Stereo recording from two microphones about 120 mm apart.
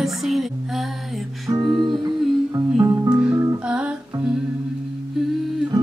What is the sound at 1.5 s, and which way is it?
Music, 35° right (ahead or behind).